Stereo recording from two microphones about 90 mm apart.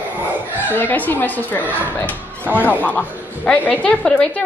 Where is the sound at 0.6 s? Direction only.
20° left (ahead or behind).